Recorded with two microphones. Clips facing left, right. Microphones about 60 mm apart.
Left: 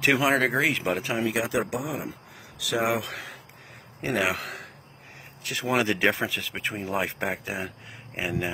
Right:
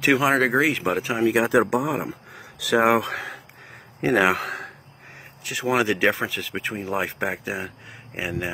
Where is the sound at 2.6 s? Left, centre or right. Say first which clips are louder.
Right 7 dB; right.